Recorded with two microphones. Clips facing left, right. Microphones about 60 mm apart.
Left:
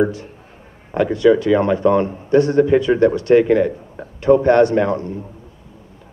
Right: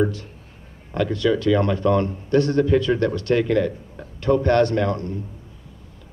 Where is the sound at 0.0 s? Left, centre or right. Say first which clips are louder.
Left 4 dB; centre.